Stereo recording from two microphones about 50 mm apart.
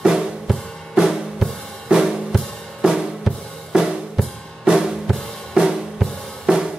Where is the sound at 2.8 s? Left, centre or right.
Centre.